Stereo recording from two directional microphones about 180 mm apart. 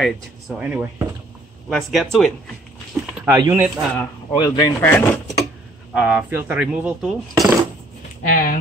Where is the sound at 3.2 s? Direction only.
20° right (ahead or behind).